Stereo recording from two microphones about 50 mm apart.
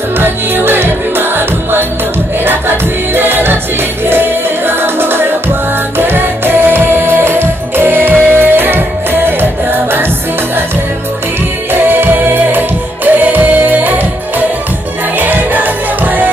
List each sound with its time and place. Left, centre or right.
0.2 s music: right
3.2 s music: right
11.7 s music: right
15.1 s music: right